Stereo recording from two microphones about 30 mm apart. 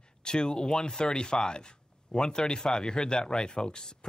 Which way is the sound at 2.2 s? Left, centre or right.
Centre.